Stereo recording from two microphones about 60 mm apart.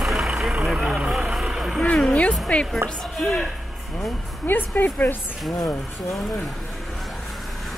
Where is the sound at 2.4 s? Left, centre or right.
Centre.